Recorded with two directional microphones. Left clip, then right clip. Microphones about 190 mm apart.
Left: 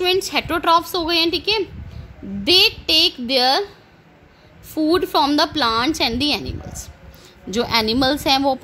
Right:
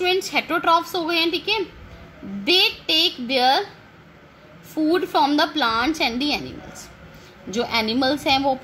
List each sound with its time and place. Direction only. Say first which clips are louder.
0.0 s a woman's voice: left 2 dB; 50° left (ahead or behind)
4.7 s a woman's voice: left 2 dB; 50° left (ahead or behind)